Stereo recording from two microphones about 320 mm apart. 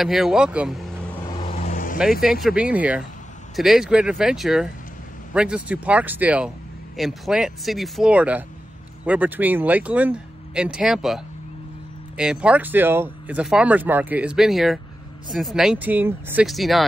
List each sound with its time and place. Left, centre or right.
0.0 s speech: centre
1.2 s vehicle: centre
2.4 s speech: centre